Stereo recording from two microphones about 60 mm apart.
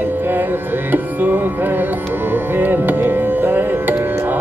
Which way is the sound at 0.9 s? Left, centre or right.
Right.